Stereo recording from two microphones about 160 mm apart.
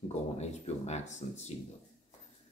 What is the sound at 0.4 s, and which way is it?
Speech, 45° left (ahead or behind).